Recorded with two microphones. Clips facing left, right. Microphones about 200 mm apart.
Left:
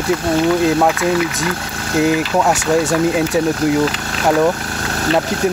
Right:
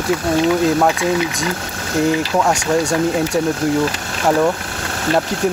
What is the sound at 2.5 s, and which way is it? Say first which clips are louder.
Speech: left 2 dB; 5° left (ahead or behind).